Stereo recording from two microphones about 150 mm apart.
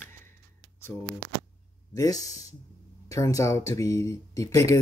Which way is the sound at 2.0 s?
25° left (ahead or behind).